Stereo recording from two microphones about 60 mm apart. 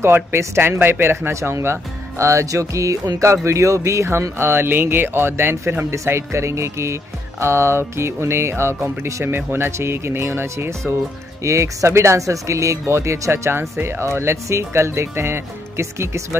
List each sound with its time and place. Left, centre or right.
0.0 s speech: right